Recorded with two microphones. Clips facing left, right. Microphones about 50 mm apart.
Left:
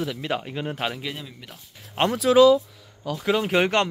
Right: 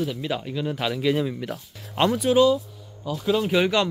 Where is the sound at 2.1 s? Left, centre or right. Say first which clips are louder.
Left 5 dB; left.